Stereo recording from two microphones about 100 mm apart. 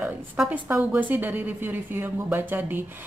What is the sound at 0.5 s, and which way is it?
A woman's voice, 15° right (ahead or behind).